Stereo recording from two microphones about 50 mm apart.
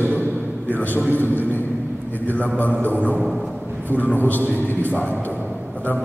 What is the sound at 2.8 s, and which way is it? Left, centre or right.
A man's voice, left.